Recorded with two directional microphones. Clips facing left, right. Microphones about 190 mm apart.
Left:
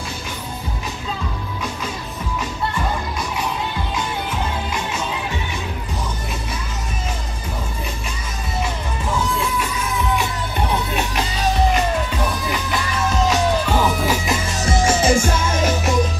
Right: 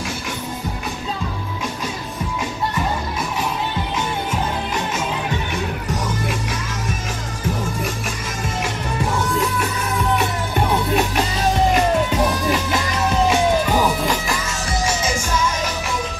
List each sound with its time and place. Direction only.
12.7 s music: 15° right (ahead or behind)
13.9 s music: 5° left (ahead or behind)
14.2 s music: 20° left (ahead or behind)
15.0 s music: 55° left (ahead or behind)